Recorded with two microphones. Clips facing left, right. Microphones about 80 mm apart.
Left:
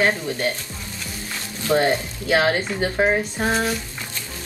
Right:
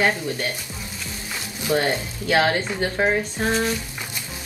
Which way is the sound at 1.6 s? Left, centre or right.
Centre.